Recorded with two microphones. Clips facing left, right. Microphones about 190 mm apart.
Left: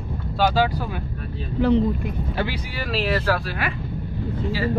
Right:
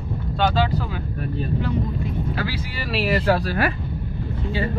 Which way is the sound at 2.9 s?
10° right (ahead or behind).